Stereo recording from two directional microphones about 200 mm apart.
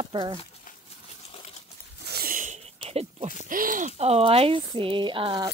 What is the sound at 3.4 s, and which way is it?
Speech, 45° right (ahead or behind).